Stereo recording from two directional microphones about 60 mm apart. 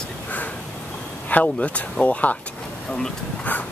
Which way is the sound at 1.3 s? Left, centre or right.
Left.